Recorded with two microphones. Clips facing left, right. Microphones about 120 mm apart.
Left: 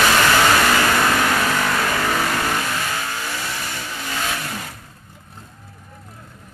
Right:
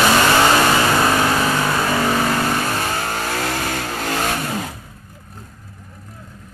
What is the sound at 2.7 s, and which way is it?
Vehicle, 35° right (ahead or behind).